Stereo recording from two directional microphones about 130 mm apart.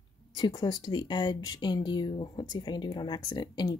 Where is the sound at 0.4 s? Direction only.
35° left (ahead or behind).